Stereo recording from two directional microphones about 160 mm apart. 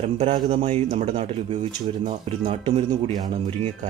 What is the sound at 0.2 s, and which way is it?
Speech, 40° right (ahead or behind).